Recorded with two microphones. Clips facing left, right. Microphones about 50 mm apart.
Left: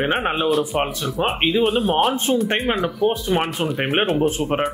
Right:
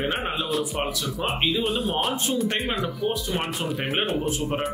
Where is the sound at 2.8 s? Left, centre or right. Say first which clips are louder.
Left 6 dB; left.